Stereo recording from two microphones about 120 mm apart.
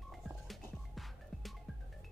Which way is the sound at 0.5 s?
Centre (ahead or behind).